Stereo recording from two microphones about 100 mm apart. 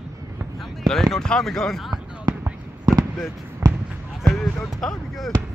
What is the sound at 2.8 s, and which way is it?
Fireworks, 40° right (ahead or behind).